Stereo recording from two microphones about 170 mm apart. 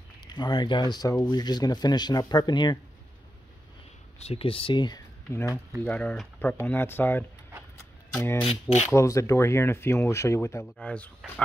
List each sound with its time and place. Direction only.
0.2 s speech: 25° left (ahead or behind)
4.2 s speech: 35° left (ahead or behind)
5.3 s speech: 15° left (ahead or behind)
8.5 s speech: 40° left (ahead or behind)
8.9 s speech: 15° left (ahead or behind)